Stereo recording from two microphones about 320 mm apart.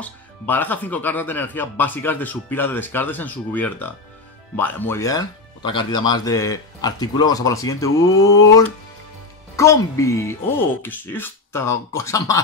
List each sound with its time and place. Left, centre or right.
0.0 s speech: centre